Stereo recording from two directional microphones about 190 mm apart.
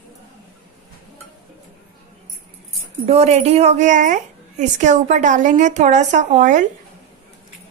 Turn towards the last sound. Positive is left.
turn(degrees=-40)  # may be behind; listen again after turning